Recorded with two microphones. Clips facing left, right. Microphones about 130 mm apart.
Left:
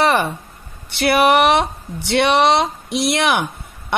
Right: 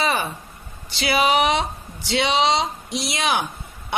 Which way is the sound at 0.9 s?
60° left (ahead or behind).